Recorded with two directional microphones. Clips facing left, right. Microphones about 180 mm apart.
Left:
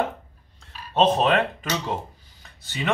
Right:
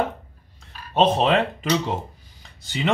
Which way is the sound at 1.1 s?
20° right (ahead or behind).